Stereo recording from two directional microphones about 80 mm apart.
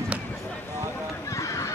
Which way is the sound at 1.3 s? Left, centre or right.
Left.